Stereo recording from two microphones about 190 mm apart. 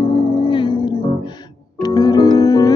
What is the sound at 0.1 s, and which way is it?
Music, 25° left (ahead or behind).